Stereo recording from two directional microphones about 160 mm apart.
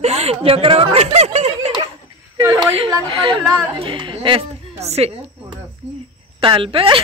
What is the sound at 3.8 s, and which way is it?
Speech, 35° right (ahead or behind).